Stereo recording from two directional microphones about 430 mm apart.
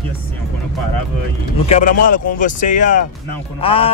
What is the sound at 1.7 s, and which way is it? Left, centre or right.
Speech, centre.